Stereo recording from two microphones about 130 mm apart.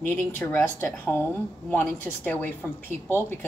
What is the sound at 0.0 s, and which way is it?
A woman's voice, 20° left (ahead or behind).